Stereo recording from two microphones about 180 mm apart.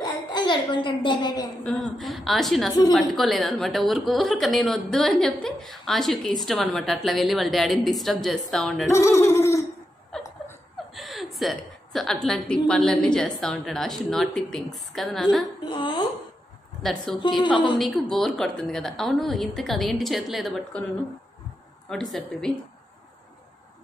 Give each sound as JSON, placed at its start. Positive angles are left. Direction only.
{"t": 0.0, "sound": "a woman's voice", "side_deg": 25}
{"t": 1.6, "sound": "speech", "side_deg": 5}
{"t": 8.9, "sound": "a sound", "side_deg": 15}
{"t": 10.1, "sound": "laughter", "side_deg": 5}
{"t": 10.9, "sound": "speech", "side_deg": 0}
{"t": 15.6, "sound": "a woman's voice", "side_deg": 25}
{"t": 16.8, "sound": "speech", "side_deg": 0}
{"t": 21.8, "sound": "speech", "side_deg": 0}